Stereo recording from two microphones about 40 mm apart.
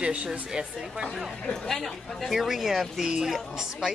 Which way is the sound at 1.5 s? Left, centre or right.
Centre.